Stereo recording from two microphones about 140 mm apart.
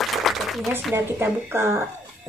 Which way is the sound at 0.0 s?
Centre (ahead or behind).